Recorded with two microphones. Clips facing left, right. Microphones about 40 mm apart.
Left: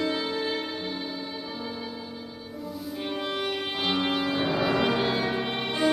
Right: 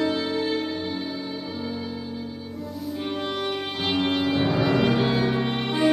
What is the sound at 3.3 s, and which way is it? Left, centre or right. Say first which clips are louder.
Music: right 2 dB; centre.